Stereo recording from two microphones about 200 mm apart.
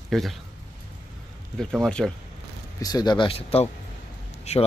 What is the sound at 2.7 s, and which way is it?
A man's voice, 20° left (ahead or behind).